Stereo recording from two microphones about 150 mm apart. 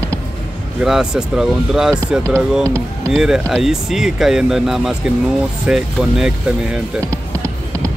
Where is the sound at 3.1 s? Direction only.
5° right (ahead or behind).